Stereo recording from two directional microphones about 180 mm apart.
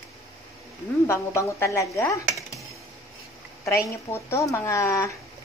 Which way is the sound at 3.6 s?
15° left (ahead or behind).